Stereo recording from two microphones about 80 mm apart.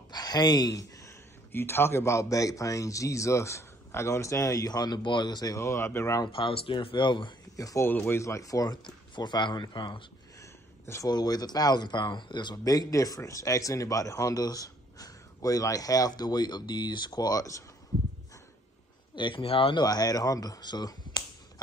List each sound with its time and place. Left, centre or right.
0.1 s a sound: left
1.5 s speech: left
5.5 s speech: left
6.2 s speech: left
7.5 s speech: left
7.8 s speech: left
8.2 s speech: left
8.8 s speech: left
10.4 s a sound: left
11.1 s speech: left
12.6 s speech: left
19.1 s speech: left
19.8 s speech: left